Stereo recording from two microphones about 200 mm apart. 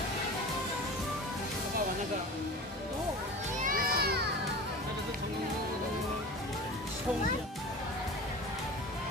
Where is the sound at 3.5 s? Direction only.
45° right (ahead or behind).